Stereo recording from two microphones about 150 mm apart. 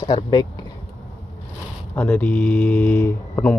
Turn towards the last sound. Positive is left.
turn(degrees=10)  # may be behind; listen again after turning